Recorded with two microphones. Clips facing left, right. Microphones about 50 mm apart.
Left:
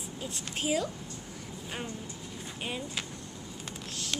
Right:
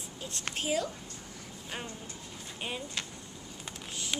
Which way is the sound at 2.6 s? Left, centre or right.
Centre.